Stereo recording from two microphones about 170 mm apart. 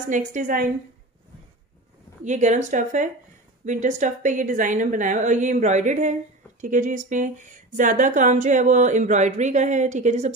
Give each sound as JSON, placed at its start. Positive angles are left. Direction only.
{"t": 0.1, "sound": "speech", "side_deg": -50}
{"t": 2.2, "sound": "speech", "side_deg": -45}